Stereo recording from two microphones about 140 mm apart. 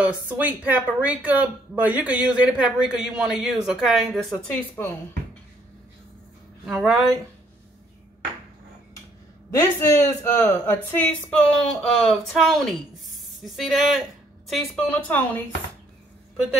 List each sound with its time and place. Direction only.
0.0 s speech: 10° right (ahead or behind); by 4.9 s 15° left (ahead or behind)
6.6 s speech: centre (ahead or behind)
9.5 s speech: 20° left (ahead or behind); by 15.0 s centre (ahead or behind)
15.0 s speech: 10° left (ahead or behind)